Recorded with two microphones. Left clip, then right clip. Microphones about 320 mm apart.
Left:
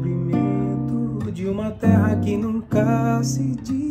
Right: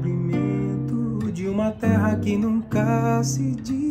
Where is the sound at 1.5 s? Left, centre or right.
Centre.